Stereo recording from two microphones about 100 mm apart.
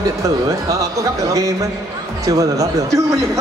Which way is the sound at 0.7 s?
35° right (ahead or behind).